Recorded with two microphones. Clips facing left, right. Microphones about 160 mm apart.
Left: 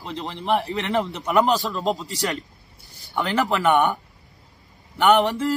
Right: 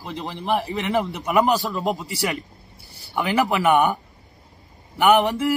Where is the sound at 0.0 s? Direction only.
5° right (ahead or behind).